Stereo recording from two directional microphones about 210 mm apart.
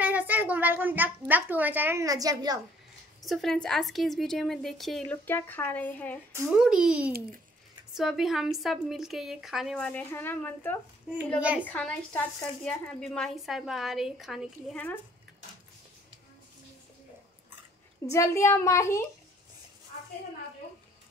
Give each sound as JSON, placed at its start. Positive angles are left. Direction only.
{"t": 0.0, "sound": "a child's voice", "side_deg": -5}
{"t": 3.2, "sound": "speech", "side_deg": 0}
{"t": 6.3, "sound": "speech", "side_deg": -5}
{"t": 7.1, "sound": "speech", "side_deg": -45}
{"t": 7.9, "sound": "speech", "side_deg": 0}
{"t": 11.3, "sound": "speech", "side_deg": -5}
{"t": 11.6, "sound": "speech", "side_deg": 5}
{"t": 18.1, "sound": "a child's voice", "side_deg": 15}